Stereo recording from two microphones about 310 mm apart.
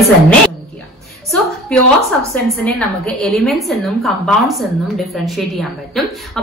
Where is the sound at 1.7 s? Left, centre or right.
Centre.